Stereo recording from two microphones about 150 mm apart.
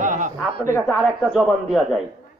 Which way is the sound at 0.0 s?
55° right (ahead or behind).